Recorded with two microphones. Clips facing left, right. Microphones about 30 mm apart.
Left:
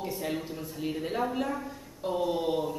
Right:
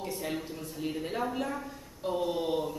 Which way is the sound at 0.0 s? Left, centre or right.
Centre.